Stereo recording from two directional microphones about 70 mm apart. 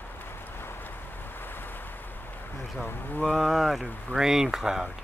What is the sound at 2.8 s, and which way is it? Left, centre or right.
Speech, left.